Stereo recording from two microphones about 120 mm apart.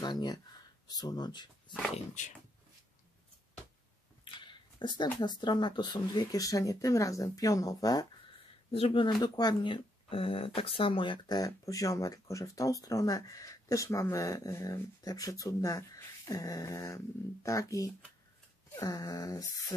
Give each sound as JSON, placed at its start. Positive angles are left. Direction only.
{"t": 0.0, "sound": "speech", "side_deg": 35}
{"t": 4.2, "sound": "a sound", "side_deg": 40}
{"t": 5.2, "sound": "speech", "side_deg": 40}
{"t": 8.7, "sound": "speech", "side_deg": 50}
{"t": 9.2, "sound": "speech", "side_deg": 35}